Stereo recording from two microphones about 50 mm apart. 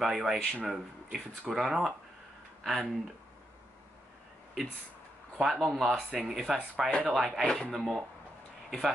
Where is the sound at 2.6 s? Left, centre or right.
Centre.